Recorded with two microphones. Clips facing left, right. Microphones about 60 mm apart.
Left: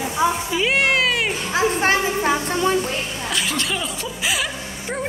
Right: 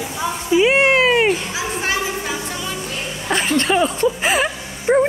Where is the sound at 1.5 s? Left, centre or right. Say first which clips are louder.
Left 4 dB; left.